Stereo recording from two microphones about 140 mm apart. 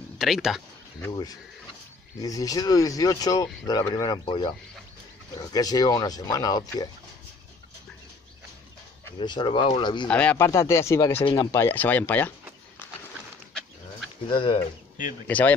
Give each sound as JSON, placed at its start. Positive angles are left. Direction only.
{"t": 0.2, "sound": "speech", "side_deg": 0}
{"t": 2.2, "sound": "speech", "side_deg": 25}
{"t": 9.2, "sound": "speech", "side_deg": 35}
{"t": 10.0, "sound": "speech", "side_deg": 10}
{"t": 10.4, "sound": "speech", "side_deg": 20}
{"t": 14.2, "sound": "speech", "side_deg": 35}
{"t": 15.2, "sound": "speech", "side_deg": 10}